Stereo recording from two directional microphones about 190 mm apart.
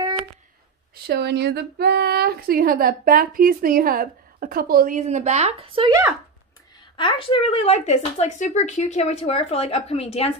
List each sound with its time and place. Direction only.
1.0 s speech: 60° right (ahead or behind); by 5.9 s 30° right (ahead or behind)
7.0 s speech: 25° left (ahead or behind)